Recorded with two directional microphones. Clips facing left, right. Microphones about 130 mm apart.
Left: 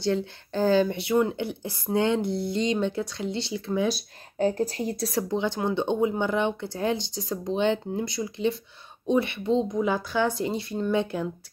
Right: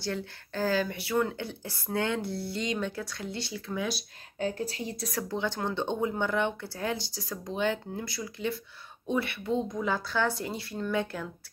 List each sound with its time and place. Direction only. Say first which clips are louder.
0.0 s speech: left 8 dB; 25° left (ahead or behind)
4.4 s speech: left 7 dB; 40° left (ahead or behind)
5.0 s speech: left 5 dB; 25° left (ahead or behind)